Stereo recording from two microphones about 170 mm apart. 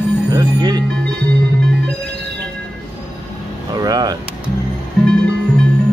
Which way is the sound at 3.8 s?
25° right (ahead or behind).